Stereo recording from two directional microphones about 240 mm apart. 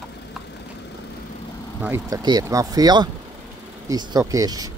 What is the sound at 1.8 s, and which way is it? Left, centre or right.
Speech, centre.